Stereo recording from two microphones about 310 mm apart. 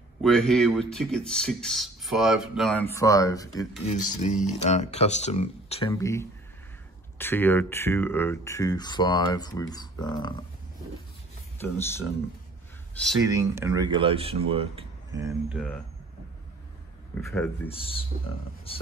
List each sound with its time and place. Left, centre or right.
0.2 s speech: centre
4.2 s speech: left
11.5 s speech: centre
13.2 s speech: centre
17.1 s speech: centre
17.6 s speech: centre